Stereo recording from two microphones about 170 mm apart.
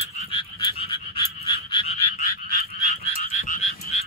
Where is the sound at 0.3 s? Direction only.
35° left (ahead or behind).